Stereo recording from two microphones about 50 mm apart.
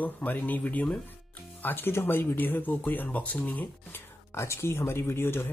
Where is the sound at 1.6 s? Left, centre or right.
Left.